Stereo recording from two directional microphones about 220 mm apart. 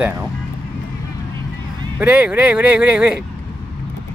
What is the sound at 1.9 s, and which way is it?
Speech, 5° right (ahead or behind).